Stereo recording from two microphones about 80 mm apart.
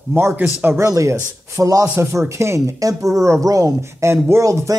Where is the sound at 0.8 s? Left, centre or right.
Right.